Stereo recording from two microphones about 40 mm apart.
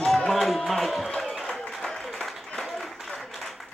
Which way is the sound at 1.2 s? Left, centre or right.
Centre.